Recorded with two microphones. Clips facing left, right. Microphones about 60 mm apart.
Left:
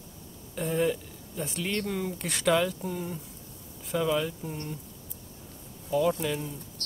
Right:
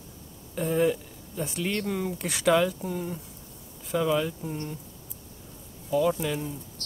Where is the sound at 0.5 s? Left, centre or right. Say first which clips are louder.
Right 3 dB; centre.